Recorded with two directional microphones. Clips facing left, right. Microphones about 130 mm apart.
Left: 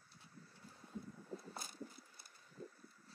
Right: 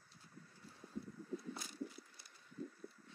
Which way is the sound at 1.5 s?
45° left (ahead or behind).